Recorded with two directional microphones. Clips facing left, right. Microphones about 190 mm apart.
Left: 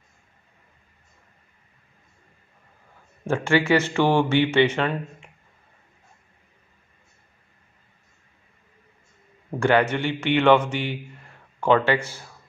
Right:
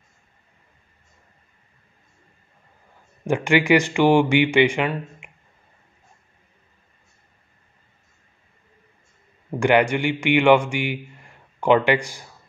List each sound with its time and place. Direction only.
3.3 s speech: 15° right (ahead or behind)
9.6 s speech: 15° right (ahead or behind)